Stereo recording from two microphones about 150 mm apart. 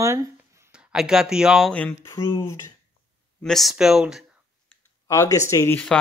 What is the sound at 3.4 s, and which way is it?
Speech, centre (ahead or behind).